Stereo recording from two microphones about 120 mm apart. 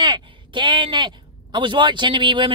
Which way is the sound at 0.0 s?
40° right (ahead or behind).